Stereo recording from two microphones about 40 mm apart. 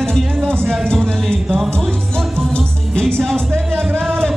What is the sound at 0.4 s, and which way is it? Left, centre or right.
Music, right.